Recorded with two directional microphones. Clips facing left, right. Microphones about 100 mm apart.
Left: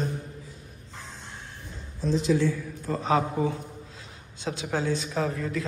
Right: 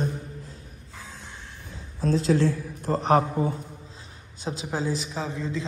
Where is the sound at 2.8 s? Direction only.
60° right (ahead or behind).